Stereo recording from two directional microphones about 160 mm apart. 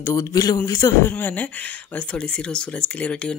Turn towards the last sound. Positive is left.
turn(degrees=5)  # may be behind; listen again after turning